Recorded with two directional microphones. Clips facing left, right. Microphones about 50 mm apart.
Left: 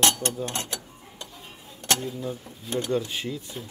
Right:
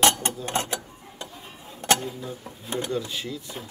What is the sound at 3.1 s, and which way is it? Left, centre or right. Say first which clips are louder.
Speech: left 1 dB; left.